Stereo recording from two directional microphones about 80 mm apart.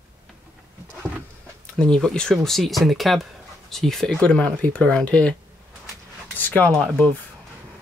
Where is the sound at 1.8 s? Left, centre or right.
Centre.